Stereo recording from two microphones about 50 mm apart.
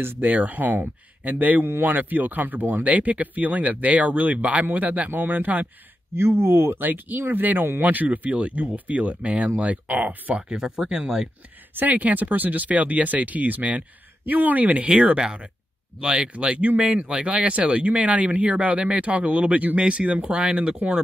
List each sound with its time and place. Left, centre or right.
0.0 s speech: right
0.3 s speech: right
6.1 s speech: right
10.5 s speech: centre
11.7 s speech: right
14.9 s speech: centre